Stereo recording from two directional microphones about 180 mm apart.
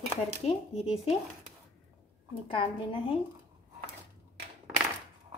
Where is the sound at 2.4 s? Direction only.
30° left (ahead or behind).